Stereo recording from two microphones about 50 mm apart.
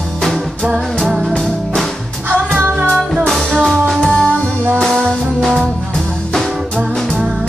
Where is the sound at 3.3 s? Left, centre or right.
Centre.